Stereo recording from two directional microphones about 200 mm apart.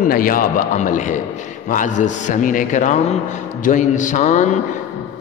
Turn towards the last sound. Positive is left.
turn(degrees=35)  # may be behind; listen again after turning